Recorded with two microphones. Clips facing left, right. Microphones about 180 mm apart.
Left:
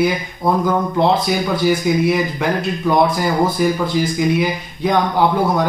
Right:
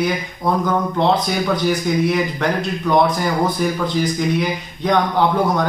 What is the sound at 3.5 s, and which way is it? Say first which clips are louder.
Speech: left 3 dB; 10° left (ahead or behind).